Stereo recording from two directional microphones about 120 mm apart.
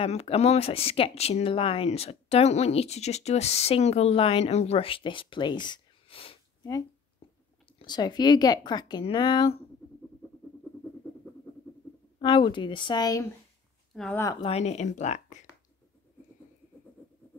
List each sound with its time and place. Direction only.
0.0 s speech: 60° left (ahead or behind)
7.6 s speech: 35° left (ahead or behind)
12.2 s speech: 45° left (ahead or behind)
13.9 s speech: centre (ahead or behind)
14.4 s speech: 60° left (ahead or behind); by 15.3 s 85° left